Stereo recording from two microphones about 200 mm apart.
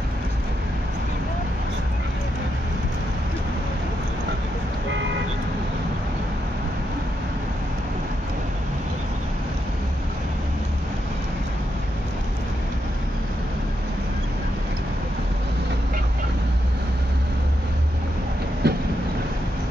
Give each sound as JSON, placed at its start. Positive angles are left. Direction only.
{"t": 18.6, "sound": "train", "side_deg": -55}